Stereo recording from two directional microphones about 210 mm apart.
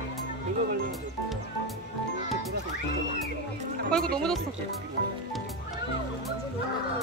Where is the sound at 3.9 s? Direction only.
5° left (ahead or behind).